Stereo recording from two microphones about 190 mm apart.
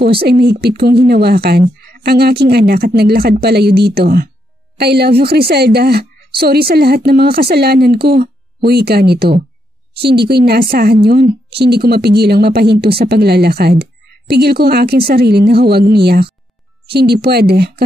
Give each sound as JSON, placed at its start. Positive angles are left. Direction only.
{"t": 0.2, "sound": "a woman's voice", "side_deg": -60}